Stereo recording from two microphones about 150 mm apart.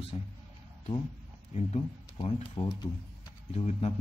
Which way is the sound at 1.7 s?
40° left (ahead or behind).